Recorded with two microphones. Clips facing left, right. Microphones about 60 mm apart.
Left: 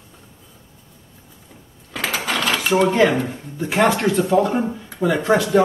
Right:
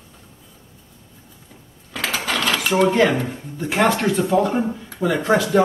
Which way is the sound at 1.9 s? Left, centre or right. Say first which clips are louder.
Even; centre.